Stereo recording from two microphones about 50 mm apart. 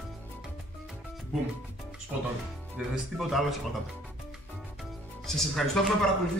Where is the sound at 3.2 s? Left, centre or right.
Centre.